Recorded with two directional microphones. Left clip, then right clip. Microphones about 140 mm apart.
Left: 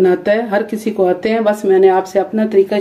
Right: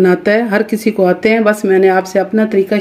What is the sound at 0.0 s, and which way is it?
Speech, 50° right (ahead or behind).